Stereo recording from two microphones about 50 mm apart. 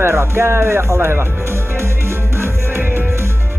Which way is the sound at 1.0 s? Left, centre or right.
Right.